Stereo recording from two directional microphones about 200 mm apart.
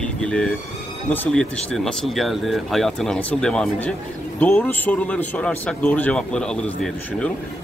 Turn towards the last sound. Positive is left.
turn(degrees=5)  # may be behind; listen again after turning